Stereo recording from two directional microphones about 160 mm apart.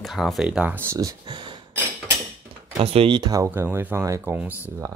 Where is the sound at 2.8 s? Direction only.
35° right (ahead or behind); by 4.4 s 15° right (ahead or behind).